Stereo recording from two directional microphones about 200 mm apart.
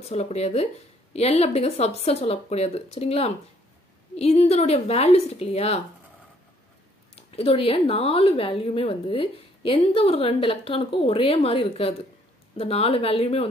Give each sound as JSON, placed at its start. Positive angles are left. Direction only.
{"t": 0.1, "sound": "speech", "side_deg": 35}
{"t": 7.2, "sound": "a woman's voice", "side_deg": 30}